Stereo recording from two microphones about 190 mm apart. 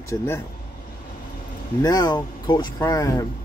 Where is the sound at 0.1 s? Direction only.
15° left (ahead or behind).